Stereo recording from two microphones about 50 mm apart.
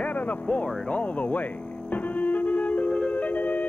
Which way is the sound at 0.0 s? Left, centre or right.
Left.